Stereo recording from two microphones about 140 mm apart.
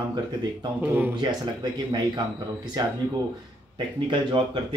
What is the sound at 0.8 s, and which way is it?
Speech, 15° right (ahead or behind).